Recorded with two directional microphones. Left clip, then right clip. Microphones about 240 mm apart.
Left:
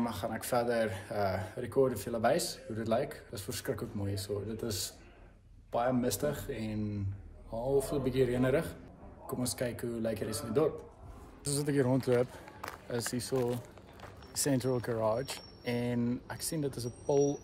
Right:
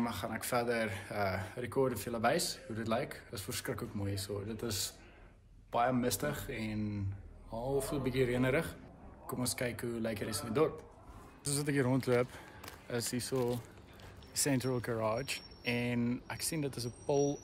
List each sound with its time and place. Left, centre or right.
0.0 s speech: centre